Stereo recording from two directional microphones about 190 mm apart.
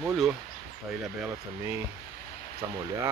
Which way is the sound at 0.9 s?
5° right (ahead or behind).